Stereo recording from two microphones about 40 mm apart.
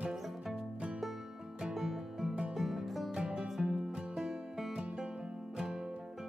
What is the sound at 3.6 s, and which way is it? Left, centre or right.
Music, right.